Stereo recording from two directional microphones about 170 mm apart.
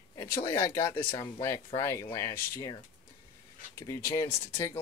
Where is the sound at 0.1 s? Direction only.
15° left (ahead or behind).